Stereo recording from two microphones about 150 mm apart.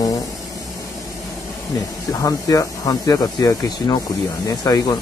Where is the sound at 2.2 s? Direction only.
20° left (ahead or behind).